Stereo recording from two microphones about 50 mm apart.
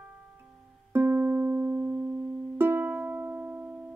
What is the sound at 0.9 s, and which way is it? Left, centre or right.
Music, right.